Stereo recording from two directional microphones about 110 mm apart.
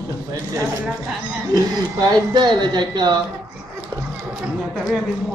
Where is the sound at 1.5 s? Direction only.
40° right (ahead or behind).